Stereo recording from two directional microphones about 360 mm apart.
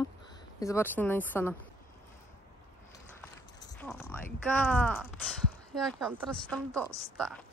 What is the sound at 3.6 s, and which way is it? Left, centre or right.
Speech, centre.